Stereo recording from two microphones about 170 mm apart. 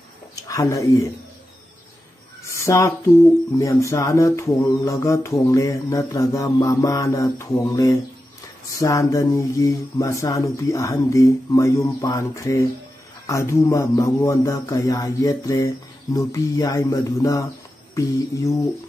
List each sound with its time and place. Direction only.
0.5 s mantra: 20° left (ahead or behind)
2.5 s a sound: 15° left (ahead or behind)
3.5 s mantra: 15° left (ahead or behind)